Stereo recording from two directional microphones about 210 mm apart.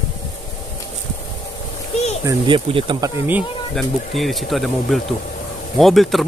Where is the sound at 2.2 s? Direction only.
25° right (ahead or behind).